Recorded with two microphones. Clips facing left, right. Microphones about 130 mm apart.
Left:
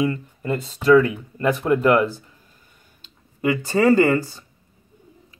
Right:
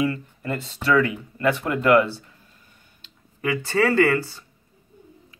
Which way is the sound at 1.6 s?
20° left (ahead or behind).